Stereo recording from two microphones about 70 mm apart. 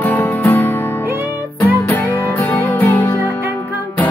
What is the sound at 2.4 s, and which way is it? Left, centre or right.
Music, left.